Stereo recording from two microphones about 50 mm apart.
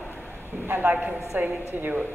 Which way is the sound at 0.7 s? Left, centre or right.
Right.